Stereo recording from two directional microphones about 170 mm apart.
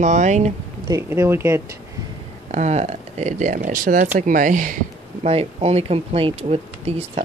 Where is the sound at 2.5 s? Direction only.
40° right (ahead or behind).